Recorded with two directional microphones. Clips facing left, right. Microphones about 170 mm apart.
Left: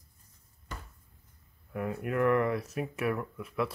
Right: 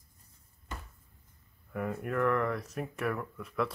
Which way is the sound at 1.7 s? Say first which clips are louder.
Left 1 dB; 5° left (ahead or behind).